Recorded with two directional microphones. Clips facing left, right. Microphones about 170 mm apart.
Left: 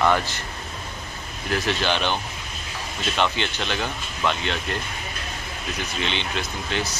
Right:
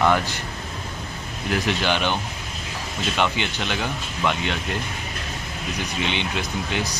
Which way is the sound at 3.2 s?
15° right (ahead or behind).